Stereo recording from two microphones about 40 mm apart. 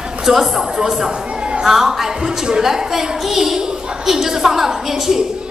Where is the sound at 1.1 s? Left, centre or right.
Right.